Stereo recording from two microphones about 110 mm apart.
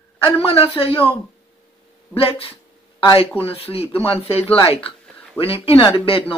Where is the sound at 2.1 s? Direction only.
60° left (ahead or behind).